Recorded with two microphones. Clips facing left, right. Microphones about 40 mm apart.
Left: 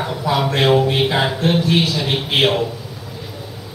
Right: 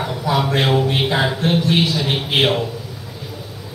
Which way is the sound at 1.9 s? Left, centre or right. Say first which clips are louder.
Even; centre.